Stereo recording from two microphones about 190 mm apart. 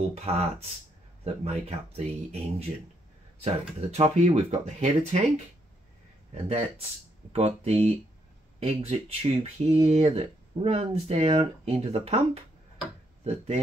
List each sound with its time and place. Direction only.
0.1 s speech: 30° right (ahead or behind)
7.3 s speech: 30° right (ahead or behind)
13.2 s speech: 35° right (ahead or behind)